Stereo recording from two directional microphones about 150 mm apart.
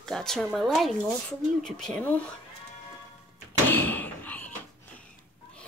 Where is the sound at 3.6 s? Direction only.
15° left (ahead or behind).